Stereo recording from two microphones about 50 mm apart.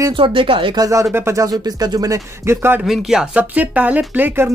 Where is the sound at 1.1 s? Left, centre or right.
Right.